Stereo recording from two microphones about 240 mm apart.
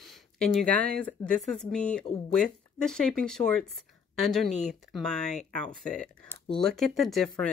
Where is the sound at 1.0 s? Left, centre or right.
Centre.